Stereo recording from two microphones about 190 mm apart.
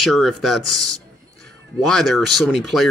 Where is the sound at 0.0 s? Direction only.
Centre (ahead or behind).